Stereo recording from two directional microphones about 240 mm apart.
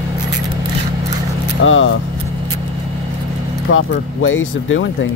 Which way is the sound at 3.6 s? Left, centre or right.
Left.